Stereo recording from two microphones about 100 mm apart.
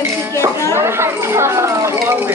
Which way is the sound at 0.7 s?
25° right (ahead or behind).